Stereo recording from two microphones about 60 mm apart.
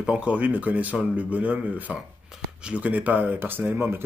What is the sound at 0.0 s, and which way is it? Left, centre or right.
Speech, centre.